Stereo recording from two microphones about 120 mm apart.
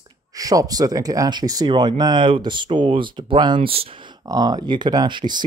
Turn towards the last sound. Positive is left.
turn(degrees=-40)  # may be behind; listen again after turning